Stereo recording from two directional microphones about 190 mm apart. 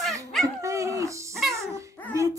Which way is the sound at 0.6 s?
15° right (ahead or behind).